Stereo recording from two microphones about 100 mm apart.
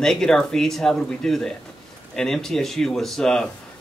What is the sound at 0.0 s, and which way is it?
Speech, 5° left (ahead or behind).